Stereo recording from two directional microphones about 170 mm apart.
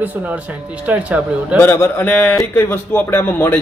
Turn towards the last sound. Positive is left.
turn(degrees=10)  # may be behind; listen again after turning